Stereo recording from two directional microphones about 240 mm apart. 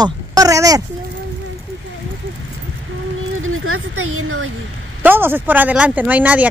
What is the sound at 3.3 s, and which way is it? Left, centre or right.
Speech, right.